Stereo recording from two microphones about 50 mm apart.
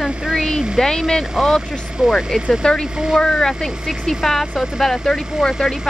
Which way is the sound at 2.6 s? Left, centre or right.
Centre.